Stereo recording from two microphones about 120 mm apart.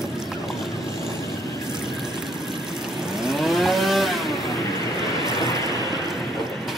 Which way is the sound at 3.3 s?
Centre (ahead or behind).